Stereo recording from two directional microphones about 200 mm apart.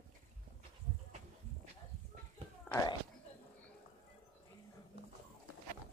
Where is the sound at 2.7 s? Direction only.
15° left (ahead or behind).